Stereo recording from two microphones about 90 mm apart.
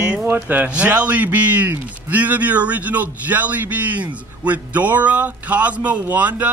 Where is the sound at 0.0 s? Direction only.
10° right (ahead or behind).